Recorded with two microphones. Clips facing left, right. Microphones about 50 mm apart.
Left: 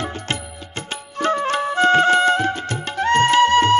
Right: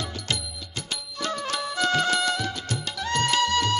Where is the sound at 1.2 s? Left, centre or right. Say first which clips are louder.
Left 10 dB; left.